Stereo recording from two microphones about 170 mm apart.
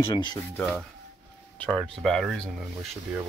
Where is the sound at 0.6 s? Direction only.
Centre (ahead or behind).